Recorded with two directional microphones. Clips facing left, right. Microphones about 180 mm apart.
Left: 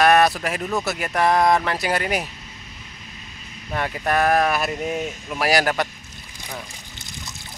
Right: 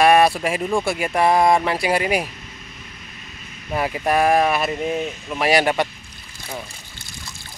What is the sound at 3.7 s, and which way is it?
Speech, 10° right (ahead or behind).